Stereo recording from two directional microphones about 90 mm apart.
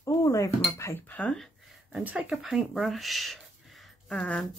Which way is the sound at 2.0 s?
15° right (ahead or behind).